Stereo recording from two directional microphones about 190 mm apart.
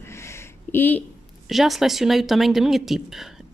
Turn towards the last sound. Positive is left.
turn(degrees=0)  # may be behind; listen again after turning